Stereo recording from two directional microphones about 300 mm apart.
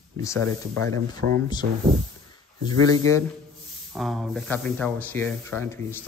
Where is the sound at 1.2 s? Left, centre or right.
Right.